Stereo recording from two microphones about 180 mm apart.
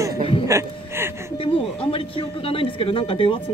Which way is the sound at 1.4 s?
30° left (ahead or behind).